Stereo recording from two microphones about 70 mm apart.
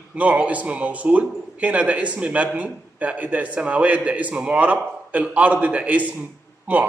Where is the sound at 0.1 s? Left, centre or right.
Right.